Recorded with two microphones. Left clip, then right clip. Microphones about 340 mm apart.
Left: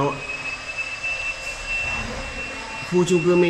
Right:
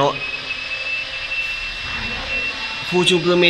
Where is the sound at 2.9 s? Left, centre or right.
Centre.